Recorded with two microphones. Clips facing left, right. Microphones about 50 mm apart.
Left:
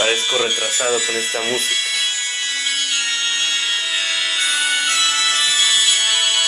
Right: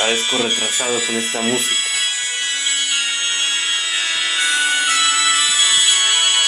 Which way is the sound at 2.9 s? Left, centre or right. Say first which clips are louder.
Even; centre.